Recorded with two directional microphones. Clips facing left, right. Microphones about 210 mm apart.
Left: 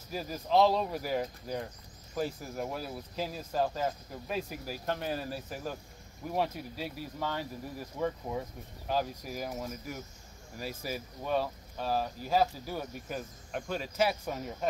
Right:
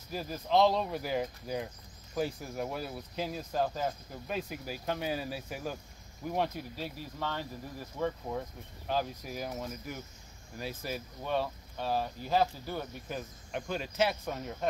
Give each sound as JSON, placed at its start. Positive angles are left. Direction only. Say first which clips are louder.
{"t": 0.1, "sound": "speech", "louder": "left 1 dB", "side_deg": 5}